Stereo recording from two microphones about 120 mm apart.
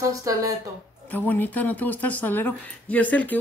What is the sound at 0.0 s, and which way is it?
Speech, 30° right (ahead or behind).